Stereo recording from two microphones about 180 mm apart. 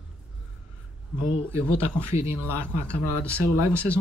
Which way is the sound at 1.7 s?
35° left (ahead or behind).